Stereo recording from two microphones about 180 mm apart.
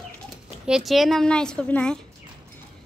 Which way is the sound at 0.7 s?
Centre (ahead or behind).